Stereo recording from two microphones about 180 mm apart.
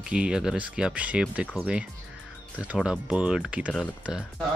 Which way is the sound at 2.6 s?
5° right (ahead or behind).